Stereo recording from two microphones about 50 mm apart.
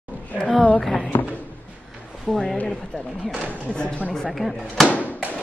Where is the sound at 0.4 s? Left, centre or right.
Left.